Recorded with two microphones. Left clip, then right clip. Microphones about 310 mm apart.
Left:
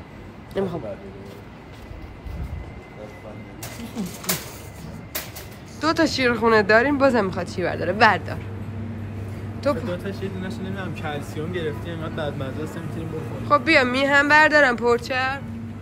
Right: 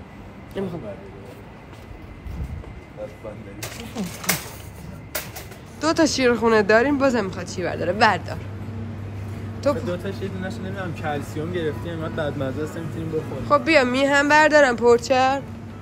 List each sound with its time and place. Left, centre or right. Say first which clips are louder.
0.6 s a man's voice: left 4 dB; centre
5.8 s speech: right 1 dB; centre
9.6 s a man's voice: right 1 dB; centre
10.0 s speech: right 1 dB; right
13.5 s speech: even; centre